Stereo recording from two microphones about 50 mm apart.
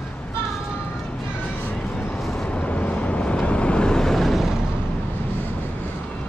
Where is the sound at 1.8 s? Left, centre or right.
Left.